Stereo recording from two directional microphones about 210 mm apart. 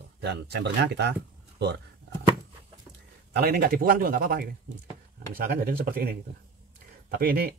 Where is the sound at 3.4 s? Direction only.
50° right (ahead or behind).